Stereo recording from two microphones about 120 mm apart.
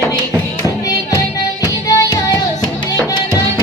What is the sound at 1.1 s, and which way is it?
Music, 30° left (ahead or behind).